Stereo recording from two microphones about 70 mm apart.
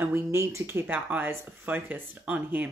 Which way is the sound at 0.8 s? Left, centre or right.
Right.